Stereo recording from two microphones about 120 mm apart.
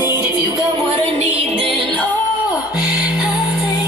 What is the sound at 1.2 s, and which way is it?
Music, 60° right (ahead or behind).